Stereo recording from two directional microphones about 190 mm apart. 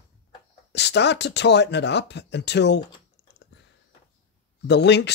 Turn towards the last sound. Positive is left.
turn(degrees=65)  # may be behind; listen again after turning